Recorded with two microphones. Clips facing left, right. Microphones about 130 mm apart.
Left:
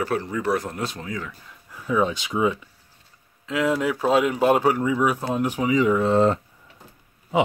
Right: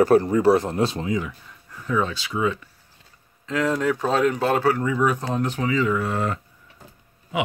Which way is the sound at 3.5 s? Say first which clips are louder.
Even; 5° left (ahead or behind).